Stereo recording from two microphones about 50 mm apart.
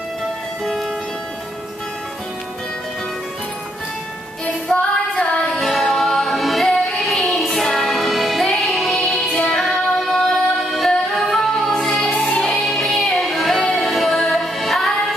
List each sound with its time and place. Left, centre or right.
4.6 s female singing: left
5.6 s music: centre